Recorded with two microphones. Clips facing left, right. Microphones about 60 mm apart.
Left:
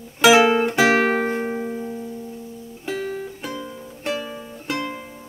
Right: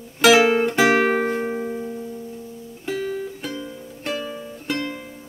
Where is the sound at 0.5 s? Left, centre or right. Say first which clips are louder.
Even; centre.